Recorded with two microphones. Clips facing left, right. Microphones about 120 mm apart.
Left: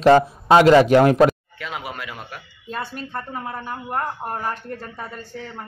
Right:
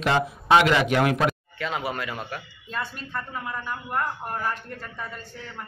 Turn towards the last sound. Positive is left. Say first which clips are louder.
# left 2 dB
turn(degrees=35)  # may be behind; listen again after turning